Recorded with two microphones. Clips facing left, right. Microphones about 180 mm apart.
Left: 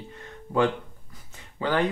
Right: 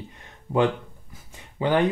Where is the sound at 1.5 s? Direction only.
20° right (ahead or behind).